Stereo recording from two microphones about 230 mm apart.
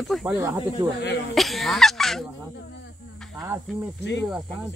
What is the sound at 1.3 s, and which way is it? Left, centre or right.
Speech, centre.